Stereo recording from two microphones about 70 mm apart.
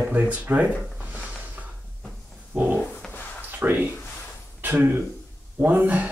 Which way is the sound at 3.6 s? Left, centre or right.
Right.